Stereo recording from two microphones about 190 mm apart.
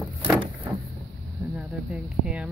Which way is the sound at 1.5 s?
5° right (ahead or behind).